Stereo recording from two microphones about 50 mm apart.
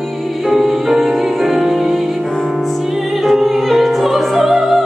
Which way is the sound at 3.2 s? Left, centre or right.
Centre.